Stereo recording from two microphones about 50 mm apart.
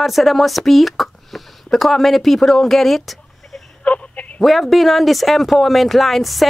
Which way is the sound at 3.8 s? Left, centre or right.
Left.